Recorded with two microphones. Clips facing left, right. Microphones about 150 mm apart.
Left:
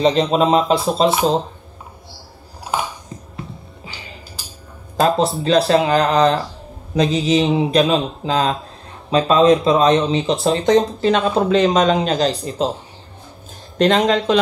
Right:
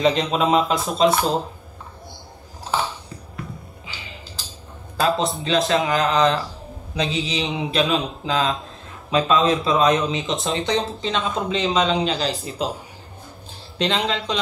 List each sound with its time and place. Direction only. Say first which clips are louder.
0.3 s a man's voice: left 4 dB; 35° left (ahead or behind)
1.2 s speech: left 5 dB; 10° right (ahead or behind)
2.6 s a sound: left 1 dB; 15° left (ahead or behind)
4.4 s a sound: left 1 dB; 10° left (ahead or behind)
4.9 s a man's voice: left 5 dB; 40° left (ahead or behind)
13.7 s speech: left 8 dB; 50° left (ahead or behind)